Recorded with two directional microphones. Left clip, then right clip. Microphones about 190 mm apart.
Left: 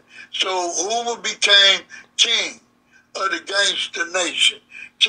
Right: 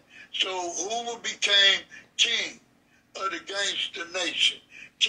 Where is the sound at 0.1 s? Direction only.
55° left (ahead or behind).